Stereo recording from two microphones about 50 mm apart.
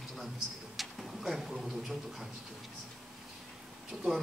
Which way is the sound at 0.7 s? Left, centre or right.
Centre.